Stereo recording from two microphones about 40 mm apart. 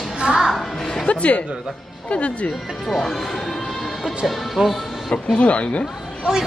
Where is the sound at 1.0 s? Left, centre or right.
Left.